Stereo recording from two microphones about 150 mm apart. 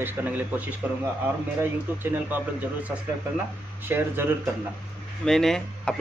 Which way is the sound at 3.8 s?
15° right (ahead or behind).